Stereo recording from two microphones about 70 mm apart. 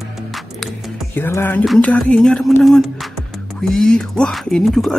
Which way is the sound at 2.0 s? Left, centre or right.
Centre.